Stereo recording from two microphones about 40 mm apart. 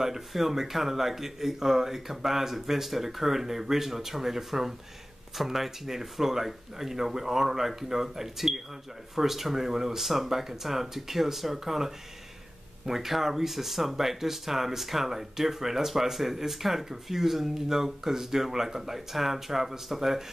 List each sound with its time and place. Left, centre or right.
0.0 s speech: centre